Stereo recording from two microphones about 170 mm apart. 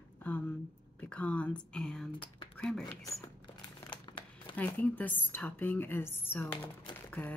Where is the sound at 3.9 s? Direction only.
30° left (ahead or behind).